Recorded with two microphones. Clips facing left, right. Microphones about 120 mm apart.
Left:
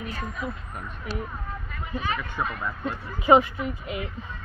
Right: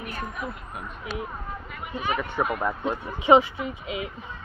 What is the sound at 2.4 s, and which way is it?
Speech, 45° right (ahead or behind).